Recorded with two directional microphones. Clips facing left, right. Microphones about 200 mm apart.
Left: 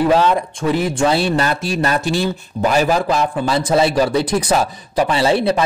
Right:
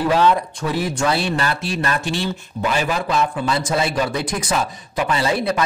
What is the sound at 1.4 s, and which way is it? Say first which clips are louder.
A man's voice: left 4 dB; 40° left (ahead or behind).